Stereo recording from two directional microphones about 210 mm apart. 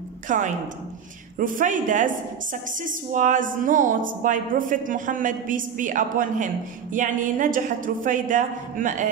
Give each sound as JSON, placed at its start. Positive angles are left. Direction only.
{"t": 0.3, "sound": "a woman's voice", "side_deg": -40}